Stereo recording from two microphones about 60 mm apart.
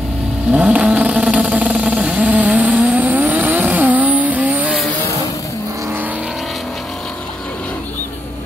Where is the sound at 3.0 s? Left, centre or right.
Right.